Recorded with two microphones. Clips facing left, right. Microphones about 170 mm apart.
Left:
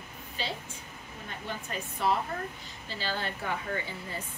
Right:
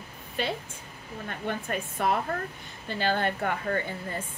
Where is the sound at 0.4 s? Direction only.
55° right (ahead or behind).